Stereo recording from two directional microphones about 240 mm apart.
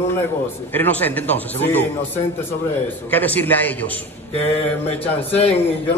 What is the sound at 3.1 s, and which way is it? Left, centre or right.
Speech, centre.